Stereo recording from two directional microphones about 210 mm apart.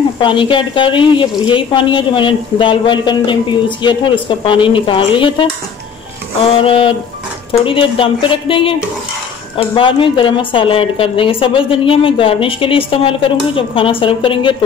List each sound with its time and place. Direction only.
0.2 s a woman's voice: 25° left (ahead or behind)
6.6 s a woman's voice: 25° left (ahead or behind)